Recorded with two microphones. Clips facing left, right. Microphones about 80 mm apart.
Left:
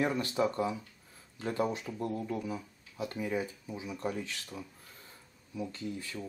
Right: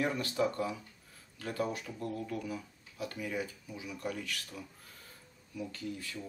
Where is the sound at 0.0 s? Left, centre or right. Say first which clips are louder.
Left 2 dB; left.